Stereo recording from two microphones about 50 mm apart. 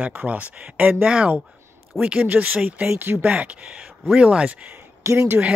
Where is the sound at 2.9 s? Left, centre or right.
Right.